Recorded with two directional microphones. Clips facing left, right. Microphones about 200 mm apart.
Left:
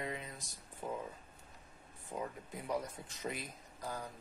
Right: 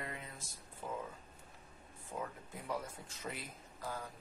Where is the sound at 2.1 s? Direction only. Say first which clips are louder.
Left 2 dB; 15° left (ahead or behind).